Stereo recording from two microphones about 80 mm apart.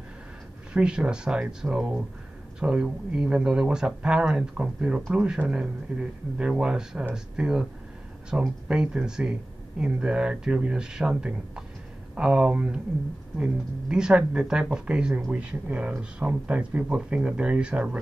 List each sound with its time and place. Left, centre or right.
0.7 s speech: centre